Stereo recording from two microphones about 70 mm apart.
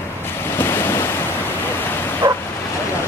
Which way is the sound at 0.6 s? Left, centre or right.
Left.